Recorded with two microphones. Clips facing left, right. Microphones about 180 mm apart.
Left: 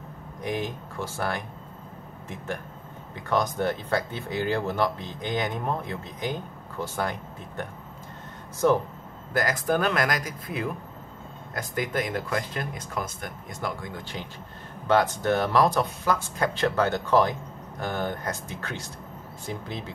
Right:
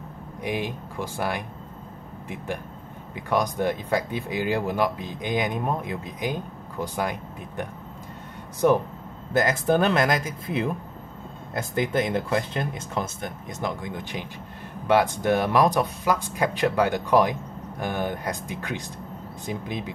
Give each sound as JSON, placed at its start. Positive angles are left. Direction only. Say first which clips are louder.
{"t": 0.4, "sound": "speech", "louder": "right 1 dB", "side_deg": -10}
{"t": 8.6, "sound": "speech", "louder": "right 2 dB", "side_deg": -15}
{"t": 9.3, "sound": "speech", "louder": "right 4 dB", "side_deg": -25}